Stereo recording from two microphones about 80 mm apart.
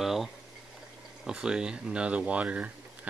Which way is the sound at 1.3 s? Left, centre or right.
Centre.